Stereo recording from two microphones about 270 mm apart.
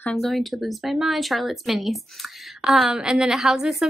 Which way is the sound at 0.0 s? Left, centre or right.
Centre.